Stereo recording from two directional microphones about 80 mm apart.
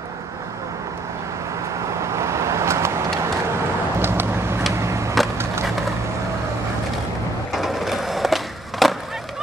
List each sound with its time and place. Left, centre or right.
2.0 s vehicle: right
4.0 s vehicle: right
7.5 s skateboard: centre